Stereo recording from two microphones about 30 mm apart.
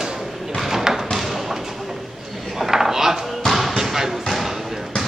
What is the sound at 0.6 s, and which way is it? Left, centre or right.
Thump, centre.